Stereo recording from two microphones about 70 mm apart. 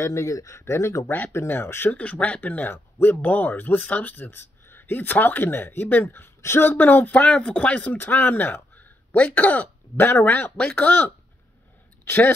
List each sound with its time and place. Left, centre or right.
0.0 s speech: left
1.9 s speech: centre